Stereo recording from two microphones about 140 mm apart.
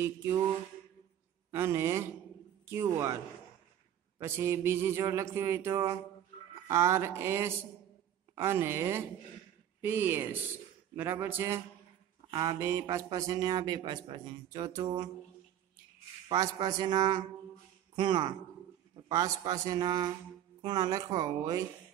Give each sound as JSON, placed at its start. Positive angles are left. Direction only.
{"t": 0.0, "sound": "speech", "side_deg": -20}
{"t": 1.5, "sound": "speech", "side_deg": -20}
{"t": 4.2, "sound": "a woman's voice", "side_deg": -20}
{"t": 16.3, "sound": "a man's voice", "side_deg": -30}